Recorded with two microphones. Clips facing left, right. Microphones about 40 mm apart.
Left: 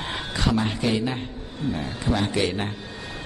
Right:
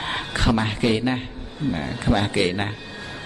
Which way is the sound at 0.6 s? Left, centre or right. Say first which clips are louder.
Right 2 dB; right.